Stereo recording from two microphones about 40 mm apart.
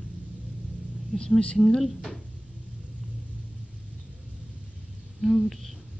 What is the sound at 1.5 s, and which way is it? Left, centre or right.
Speech, centre.